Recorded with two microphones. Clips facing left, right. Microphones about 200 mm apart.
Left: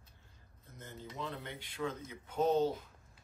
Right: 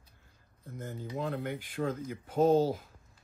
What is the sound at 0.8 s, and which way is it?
Speech, 55° right (ahead or behind).